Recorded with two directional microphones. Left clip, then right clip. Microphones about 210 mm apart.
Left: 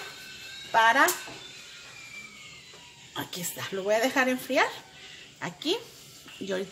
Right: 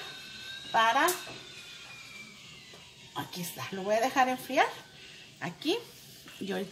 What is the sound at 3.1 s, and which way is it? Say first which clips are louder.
A woman's voice: left 3 dB; 25° left (ahead or behind).